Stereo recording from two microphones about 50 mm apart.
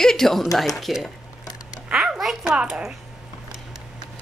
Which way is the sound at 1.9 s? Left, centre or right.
Centre.